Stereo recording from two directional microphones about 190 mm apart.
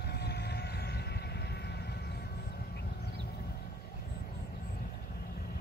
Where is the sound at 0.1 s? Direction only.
60° left (ahead or behind).